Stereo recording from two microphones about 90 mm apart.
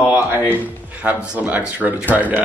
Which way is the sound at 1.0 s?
15° right (ahead or behind).